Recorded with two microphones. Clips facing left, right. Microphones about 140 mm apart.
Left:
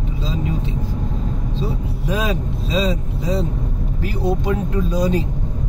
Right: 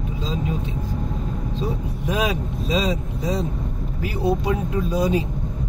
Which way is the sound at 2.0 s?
10° right (ahead or behind).